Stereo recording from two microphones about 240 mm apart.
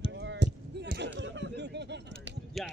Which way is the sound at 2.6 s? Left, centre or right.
Centre.